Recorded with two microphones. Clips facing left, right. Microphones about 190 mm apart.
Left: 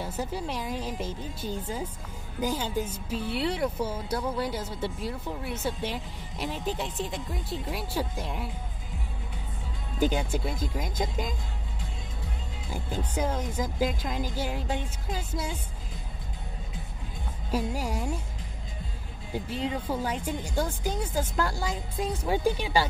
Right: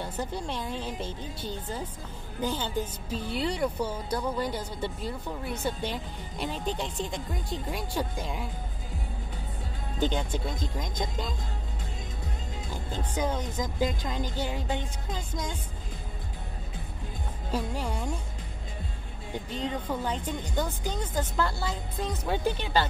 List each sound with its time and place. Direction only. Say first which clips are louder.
0.0 s speech: left 1 dB; 5° left (ahead or behind)
9.9 s speech: left 2 dB; 10° left (ahead or behind)
12.7 s speech: left 2 dB; 10° left (ahead or behind)
17.5 s speech: left 2 dB; 10° left (ahead or behind)
19.3 s speech: left 2 dB; 10° left (ahead or behind)